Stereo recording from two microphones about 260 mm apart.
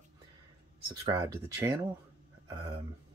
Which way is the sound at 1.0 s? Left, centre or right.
Centre.